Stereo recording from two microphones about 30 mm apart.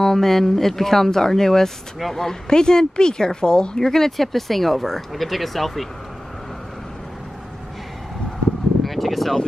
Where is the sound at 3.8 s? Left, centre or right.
Centre.